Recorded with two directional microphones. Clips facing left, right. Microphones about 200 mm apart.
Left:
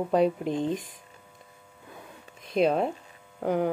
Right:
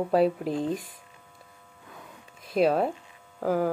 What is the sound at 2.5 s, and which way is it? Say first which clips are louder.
Speech: right 1 dB; 5° right (ahead or behind).